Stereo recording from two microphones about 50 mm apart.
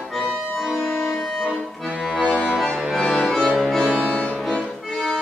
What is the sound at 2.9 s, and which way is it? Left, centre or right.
Music, centre.